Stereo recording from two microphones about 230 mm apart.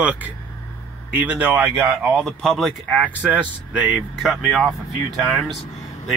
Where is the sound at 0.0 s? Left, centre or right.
Centre.